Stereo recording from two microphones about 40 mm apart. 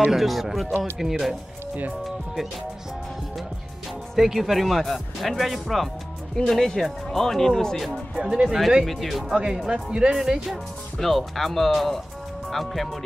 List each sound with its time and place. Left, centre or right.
0.1 s speech: centre
4.2 s speech: centre
8.2 s speech: centre
8.8 s speech: centre
9.3 s speech: centre
11.0 s speech: centre